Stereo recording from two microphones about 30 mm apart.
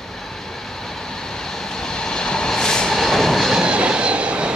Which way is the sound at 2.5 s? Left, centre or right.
Left.